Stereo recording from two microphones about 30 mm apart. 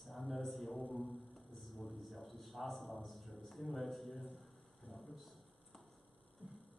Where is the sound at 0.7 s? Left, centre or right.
Left.